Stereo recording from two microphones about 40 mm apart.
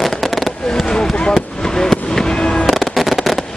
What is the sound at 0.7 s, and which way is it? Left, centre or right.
Fireworks, centre.